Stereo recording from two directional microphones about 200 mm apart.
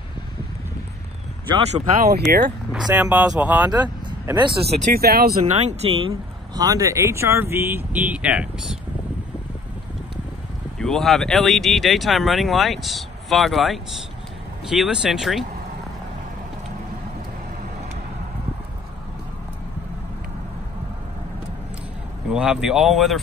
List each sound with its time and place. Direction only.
2.0 s speech: 50° right (ahead or behind)
2.7 s speech: 5° right (ahead or behind)
3.8 s speech: 20° right (ahead or behind)
4.9 s speech: 50° right (ahead or behind)
5.5 s speech: 35° right (ahead or behind); by 8.7 s 5° right (ahead or behind)
10.8 s speech: centre (ahead or behind)
22.3 s speech: 5° right (ahead or behind)